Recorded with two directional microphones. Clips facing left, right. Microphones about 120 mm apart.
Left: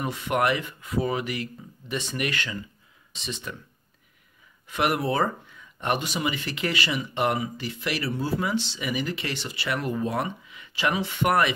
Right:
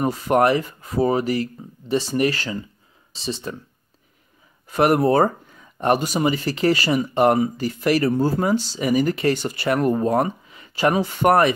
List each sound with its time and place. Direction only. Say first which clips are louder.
0.0 s speech: right 7 dB; 40° right (ahead or behind)
4.6 s speech: right 8 dB; 40° right (ahead or behind)